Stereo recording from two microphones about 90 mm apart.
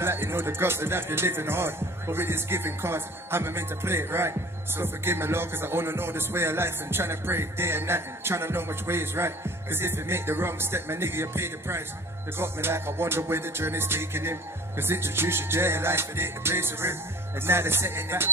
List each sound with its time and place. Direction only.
0.0 s music: 25° right (ahead or behind)